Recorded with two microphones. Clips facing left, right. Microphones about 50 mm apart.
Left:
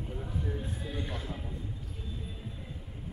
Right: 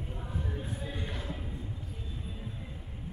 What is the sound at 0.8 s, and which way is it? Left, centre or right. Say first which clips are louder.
Music: left 1 dB; centre.